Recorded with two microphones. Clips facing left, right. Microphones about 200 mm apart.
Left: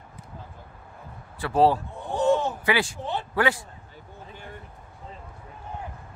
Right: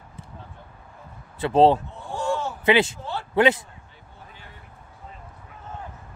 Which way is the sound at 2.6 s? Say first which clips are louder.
Right 6 dB; 25° right (ahead or behind).